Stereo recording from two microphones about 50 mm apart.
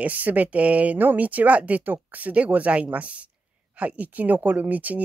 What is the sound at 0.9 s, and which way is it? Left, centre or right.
Speech, right.